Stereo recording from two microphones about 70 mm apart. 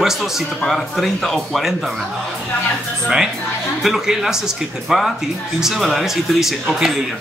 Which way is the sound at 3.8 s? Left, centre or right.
Centre.